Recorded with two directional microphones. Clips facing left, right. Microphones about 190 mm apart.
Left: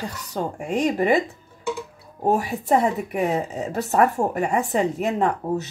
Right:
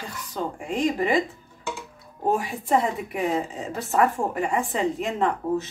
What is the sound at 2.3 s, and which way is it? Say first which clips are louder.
Speech: left 2 dB; 40° left (ahead or behind).